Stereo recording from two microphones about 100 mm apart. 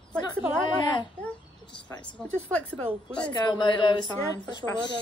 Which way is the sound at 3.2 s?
50° left (ahead or behind).